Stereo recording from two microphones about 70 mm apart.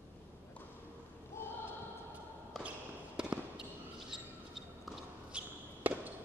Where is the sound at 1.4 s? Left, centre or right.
Left.